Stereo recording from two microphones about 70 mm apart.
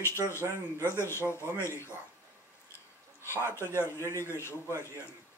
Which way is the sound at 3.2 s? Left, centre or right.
Left.